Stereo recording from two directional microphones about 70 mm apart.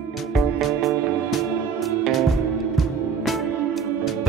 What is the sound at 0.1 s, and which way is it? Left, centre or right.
Music, centre.